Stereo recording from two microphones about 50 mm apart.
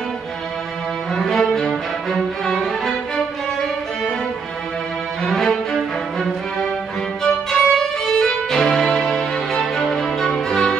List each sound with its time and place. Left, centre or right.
1.1 s music: centre
5.3 s music: centre
7.2 s violin: centre